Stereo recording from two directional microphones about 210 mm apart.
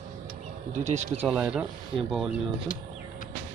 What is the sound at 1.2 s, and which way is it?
Speech, 5° right (ahead or behind).